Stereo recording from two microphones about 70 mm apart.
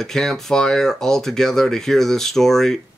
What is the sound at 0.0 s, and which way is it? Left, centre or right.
Speech, centre.